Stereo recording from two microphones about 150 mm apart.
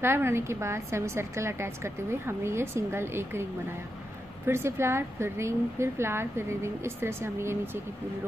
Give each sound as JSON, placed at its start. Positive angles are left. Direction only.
{"t": 0.0, "sound": "a woman's voice", "side_deg": -15}
{"t": 4.5, "sound": "a woman's voice", "side_deg": -15}